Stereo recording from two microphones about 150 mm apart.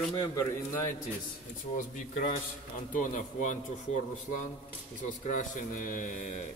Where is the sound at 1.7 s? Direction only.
50° left (ahead or behind).